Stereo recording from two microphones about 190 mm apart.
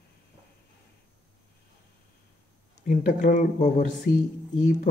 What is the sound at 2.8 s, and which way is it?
Speech, 45° left (ahead or behind).